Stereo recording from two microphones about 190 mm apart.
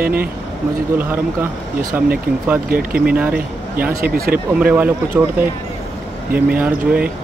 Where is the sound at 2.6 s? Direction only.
50° right (ahead or behind).